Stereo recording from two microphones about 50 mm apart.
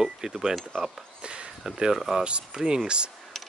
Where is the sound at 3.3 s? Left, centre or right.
Centre.